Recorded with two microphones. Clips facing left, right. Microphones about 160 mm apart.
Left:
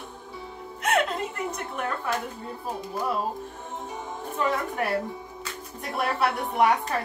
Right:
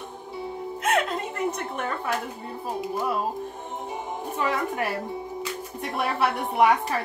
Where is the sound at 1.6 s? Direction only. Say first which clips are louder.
Right 1 dB; centre (ahead or behind).